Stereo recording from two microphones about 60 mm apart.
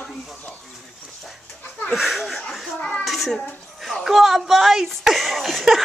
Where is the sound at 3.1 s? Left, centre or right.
Centre.